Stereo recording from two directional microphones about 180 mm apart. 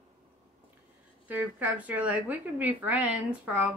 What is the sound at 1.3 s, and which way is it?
A woman's voice, 10° right (ahead or behind).